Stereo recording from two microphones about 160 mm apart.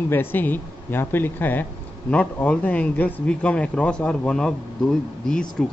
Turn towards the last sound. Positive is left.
turn(degrees=5)  # may be behind; listen again after turning